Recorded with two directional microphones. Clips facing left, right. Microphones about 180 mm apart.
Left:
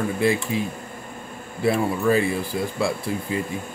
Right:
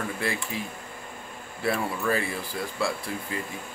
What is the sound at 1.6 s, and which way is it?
Speech, 20° left (ahead or behind).